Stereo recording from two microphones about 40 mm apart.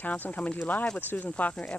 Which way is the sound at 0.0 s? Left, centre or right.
Left.